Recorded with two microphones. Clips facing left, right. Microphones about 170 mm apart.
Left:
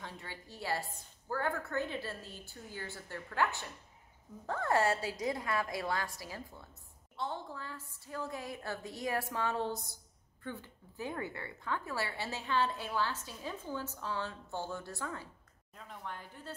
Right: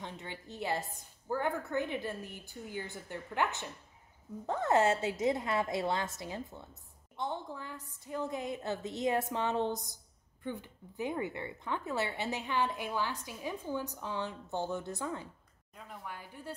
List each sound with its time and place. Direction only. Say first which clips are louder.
0.0 s a woman's voice: right 3 dB; 20° right (ahead or behind)
15.7 s speech: even; 5° right (ahead or behind)